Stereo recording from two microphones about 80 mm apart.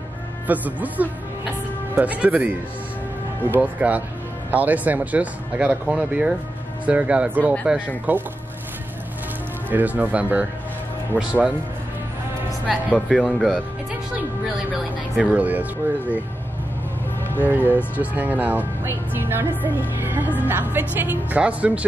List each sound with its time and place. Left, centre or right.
0.5 s speech: right
9.7 s speech: right
12.7 s speech: centre
15.3 s speech: right
17.4 s speech: right